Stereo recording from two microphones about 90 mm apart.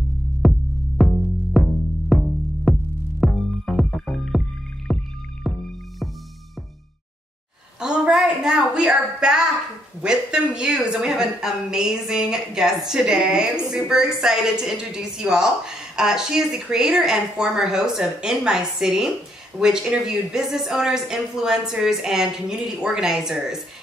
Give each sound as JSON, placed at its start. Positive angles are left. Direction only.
{"t": 0.4, "sound": "music", "side_deg": 0}
{"t": 7.8, "sound": "a sound", "side_deg": -10}
{"t": 10.0, "sound": "a woman's voice", "side_deg": -10}